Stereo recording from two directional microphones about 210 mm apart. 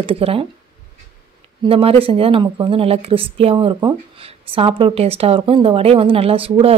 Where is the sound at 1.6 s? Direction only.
25° right (ahead or behind).